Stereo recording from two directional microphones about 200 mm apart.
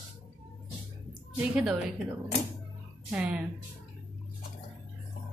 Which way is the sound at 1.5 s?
5° right (ahead or behind).